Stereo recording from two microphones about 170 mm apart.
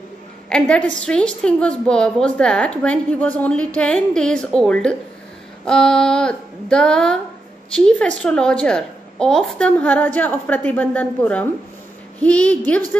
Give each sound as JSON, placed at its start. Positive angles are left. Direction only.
{"t": 0.5, "sound": "a woman's voice", "side_deg": 5}